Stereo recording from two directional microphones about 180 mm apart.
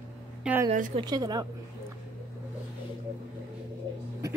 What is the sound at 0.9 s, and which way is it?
Speech, 20° right (ahead or behind).